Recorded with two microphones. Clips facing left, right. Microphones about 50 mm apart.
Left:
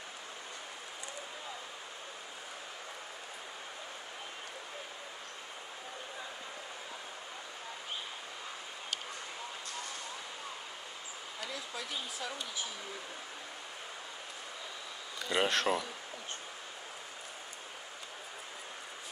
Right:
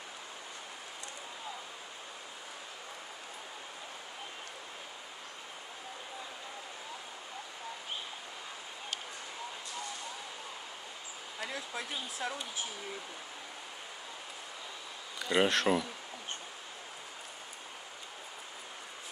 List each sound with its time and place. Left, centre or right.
11.4 s speech: right
15.1 s speech: centre